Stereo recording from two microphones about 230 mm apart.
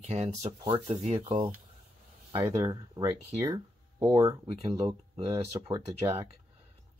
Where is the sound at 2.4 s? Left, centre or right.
Centre.